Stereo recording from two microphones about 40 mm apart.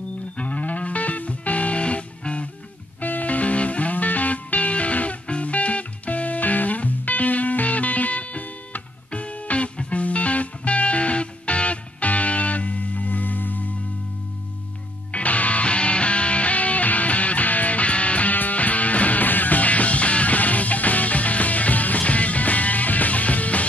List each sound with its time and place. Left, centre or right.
0.4 s music: left
3.0 s music: left
15.1 s music: left